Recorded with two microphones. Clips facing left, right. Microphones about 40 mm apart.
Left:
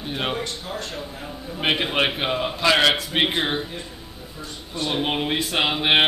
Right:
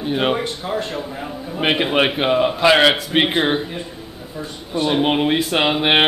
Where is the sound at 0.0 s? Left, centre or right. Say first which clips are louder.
Right 7 dB; centre.